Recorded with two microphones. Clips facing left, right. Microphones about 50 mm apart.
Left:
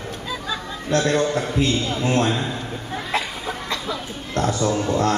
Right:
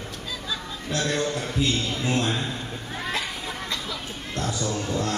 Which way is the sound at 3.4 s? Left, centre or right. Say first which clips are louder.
Left 5 dB; left.